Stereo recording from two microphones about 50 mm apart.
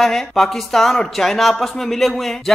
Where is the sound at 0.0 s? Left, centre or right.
Centre.